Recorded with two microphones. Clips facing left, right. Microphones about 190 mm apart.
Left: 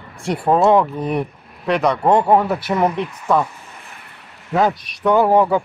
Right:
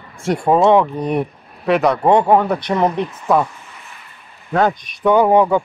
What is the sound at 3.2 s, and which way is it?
Speech, 10° right (ahead or behind).